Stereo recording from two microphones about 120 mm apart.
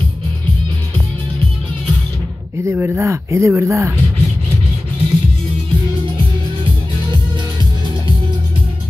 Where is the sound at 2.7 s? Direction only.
20° right (ahead or behind).